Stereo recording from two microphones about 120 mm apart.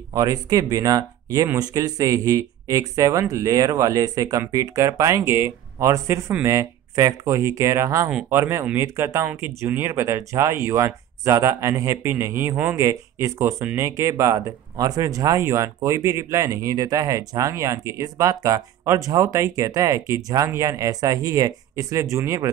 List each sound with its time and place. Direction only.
0.1 s speech: 30° right (ahead or behind)